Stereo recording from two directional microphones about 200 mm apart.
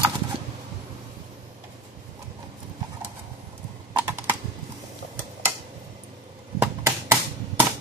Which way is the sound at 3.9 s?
10° right (ahead or behind).